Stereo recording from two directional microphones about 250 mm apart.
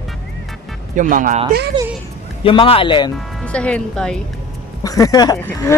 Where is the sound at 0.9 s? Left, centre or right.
Right.